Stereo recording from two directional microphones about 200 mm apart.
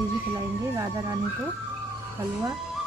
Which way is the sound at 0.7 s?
15° right (ahead or behind).